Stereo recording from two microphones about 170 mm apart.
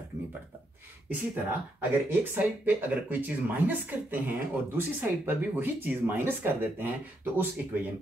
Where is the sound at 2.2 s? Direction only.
10° right (ahead or behind).